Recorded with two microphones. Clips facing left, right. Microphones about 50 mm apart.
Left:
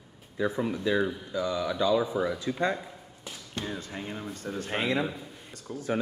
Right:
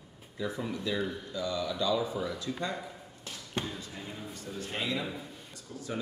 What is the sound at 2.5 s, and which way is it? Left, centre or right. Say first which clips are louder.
Speech: left 7 dB; left.